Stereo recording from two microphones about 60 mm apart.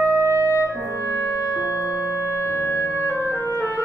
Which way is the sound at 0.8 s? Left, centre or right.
Left.